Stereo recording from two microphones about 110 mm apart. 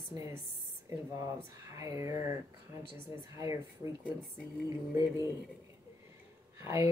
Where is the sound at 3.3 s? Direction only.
30° right (ahead or behind).